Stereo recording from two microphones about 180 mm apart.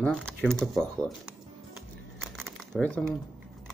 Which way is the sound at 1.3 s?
Centre (ahead or behind).